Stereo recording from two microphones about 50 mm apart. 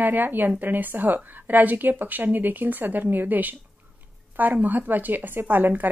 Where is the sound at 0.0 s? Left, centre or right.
Right.